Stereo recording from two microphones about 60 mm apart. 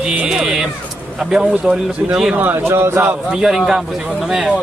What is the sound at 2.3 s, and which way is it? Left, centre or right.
Speech, right.